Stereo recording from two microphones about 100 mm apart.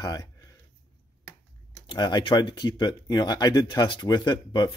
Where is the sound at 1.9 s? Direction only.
45° left (ahead or behind).